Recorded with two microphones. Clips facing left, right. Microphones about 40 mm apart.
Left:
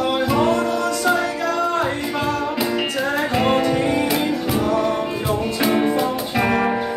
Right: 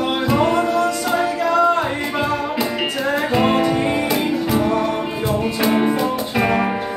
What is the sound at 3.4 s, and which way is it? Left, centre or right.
Music, centre.